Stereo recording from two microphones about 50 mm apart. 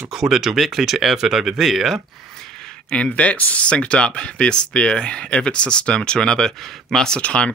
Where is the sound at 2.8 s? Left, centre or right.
Left.